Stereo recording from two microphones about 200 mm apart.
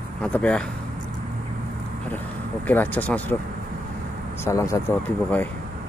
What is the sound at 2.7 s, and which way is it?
Speech, 10° left (ahead or behind).